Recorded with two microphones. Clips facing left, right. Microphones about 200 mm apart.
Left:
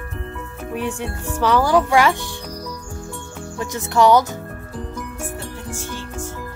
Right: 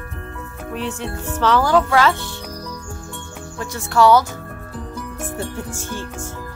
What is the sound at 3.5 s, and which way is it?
Speech, 20° left (ahead or behind).